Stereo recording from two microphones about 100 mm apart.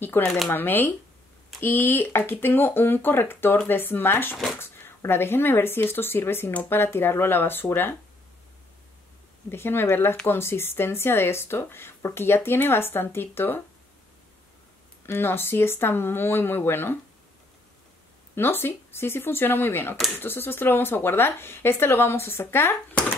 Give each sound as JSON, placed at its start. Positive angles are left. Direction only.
{"t": 0.0, "sound": "speech", "side_deg": 25}
{"t": 9.5, "sound": "speech", "side_deg": 25}
{"t": 15.0, "sound": "speech", "side_deg": 25}
{"t": 18.3, "sound": "speech", "side_deg": 25}